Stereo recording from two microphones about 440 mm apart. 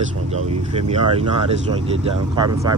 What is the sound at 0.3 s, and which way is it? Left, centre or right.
Speech, centre.